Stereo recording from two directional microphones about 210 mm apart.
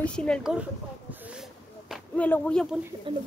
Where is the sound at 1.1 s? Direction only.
5° right (ahead or behind).